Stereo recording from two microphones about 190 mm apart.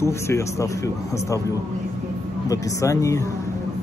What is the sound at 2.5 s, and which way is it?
Speech, 15° left (ahead or behind).